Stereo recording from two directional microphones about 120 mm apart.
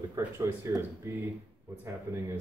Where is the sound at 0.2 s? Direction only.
25° right (ahead or behind).